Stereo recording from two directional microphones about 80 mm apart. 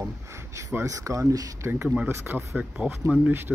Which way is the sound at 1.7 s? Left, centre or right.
Right.